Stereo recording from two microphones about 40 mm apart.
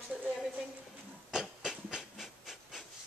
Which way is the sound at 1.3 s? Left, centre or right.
Centre.